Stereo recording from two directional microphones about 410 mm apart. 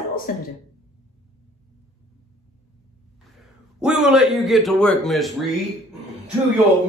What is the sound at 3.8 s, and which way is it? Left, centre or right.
A man's voice, centre.